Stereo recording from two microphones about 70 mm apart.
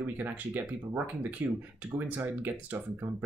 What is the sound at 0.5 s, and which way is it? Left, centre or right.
Speech, right.